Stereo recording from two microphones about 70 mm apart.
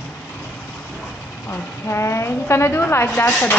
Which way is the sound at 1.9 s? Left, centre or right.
Left.